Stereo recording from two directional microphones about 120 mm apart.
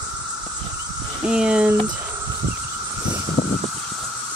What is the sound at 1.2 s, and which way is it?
Speech, 5° right (ahead or behind).